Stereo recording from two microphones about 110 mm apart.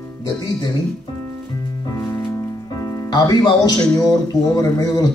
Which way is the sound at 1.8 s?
30° left (ahead or behind).